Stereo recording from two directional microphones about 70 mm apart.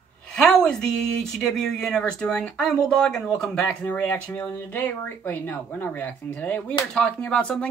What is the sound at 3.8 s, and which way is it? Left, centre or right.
Speech, left.